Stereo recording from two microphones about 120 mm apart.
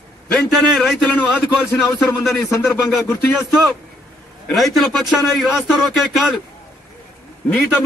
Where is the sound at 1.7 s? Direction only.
20° left (ahead or behind).